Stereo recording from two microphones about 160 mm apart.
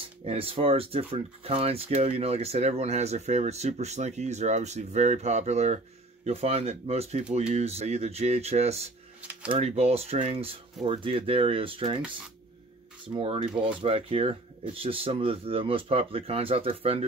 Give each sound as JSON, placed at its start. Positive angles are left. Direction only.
{"t": 0.2, "sound": "speech", "side_deg": -40}
{"t": 13.2, "sound": "speech", "side_deg": -35}